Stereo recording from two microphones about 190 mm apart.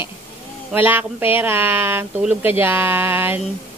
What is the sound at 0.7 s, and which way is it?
Speech, 10° right (ahead or behind).